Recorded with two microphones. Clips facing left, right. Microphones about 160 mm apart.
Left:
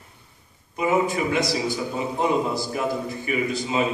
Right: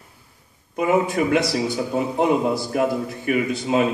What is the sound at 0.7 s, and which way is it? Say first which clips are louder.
A man's voice: right 3 dB; 60° right (ahead or behind).